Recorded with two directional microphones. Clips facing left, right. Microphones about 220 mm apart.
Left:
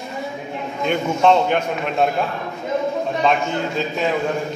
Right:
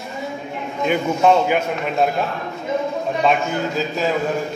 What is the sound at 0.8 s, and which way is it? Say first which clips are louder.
A man's voice: even; 5° right (ahead or behind).